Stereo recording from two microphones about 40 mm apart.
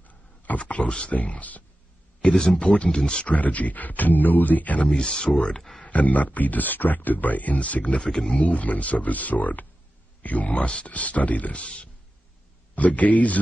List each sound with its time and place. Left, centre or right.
0.0 s a sound: left
0.6 s speech: left
2.9 s speech: left
3.3 s speech: left
4.9 s speech: centre
5.9 s speech: left
8.0 s speech: left
8.4 s speech: left
11.6 s speech: left
12.7 s speech: left